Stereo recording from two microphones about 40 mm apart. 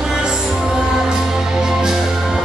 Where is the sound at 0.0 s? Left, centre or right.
Centre.